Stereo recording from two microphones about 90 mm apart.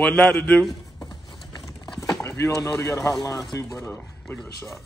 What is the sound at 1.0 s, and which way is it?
Horse, 50° left (ahead or behind).